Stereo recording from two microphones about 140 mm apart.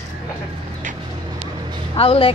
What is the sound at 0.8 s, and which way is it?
Vehicle, 65° right (ahead or behind).